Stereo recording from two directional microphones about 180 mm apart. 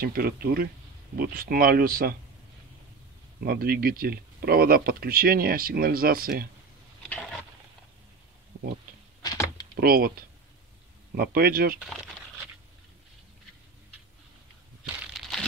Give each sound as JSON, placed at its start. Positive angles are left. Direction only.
{"t": 0.0, "sound": "speech", "side_deg": -55}
{"t": 3.4, "sound": "speech", "side_deg": -55}
{"t": 9.2, "sound": "a sound", "side_deg": 20}
{"t": 9.8, "sound": "speech", "side_deg": -55}
{"t": 11.1, "sound": "speech", "side_deg": -55}
{"t": 15.1, "sound": "a sound", "side_deg": 0}